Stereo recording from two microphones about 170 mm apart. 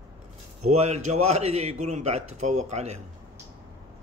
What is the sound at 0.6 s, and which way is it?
A man's voice, 40° right (ahead or behind).